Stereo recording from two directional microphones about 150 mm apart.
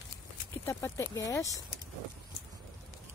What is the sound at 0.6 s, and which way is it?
Speech, 15° left (ahead or behind).